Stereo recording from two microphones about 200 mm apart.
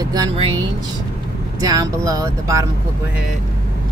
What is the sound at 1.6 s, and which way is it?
Speech, 20° right (ahead or behind).